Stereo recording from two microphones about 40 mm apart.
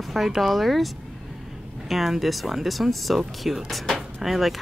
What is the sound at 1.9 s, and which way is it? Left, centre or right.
Speech, centre.